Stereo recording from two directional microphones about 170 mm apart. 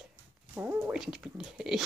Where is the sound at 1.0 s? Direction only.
5° right (ahead or behind).